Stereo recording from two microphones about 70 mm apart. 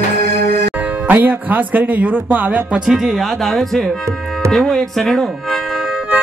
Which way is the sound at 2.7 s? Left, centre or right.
Centre.